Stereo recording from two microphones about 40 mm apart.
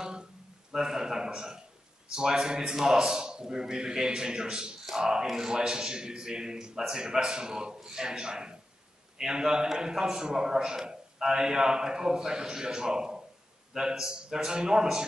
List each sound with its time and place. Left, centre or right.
0.7 s a man's voice: centre